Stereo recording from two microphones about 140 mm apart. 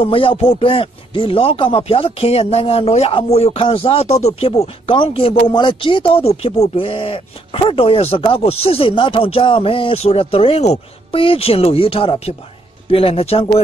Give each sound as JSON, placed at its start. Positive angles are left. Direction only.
{"t": 0.0, "sound": "speech", "side_deg": 40}